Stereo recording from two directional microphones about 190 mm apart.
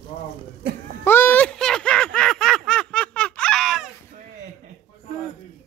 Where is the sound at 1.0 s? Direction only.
10° left (ahead or behind).